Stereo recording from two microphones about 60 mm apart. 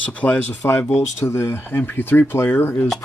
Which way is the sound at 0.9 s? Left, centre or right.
Left.